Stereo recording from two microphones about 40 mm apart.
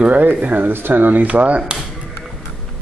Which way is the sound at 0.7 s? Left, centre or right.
Right.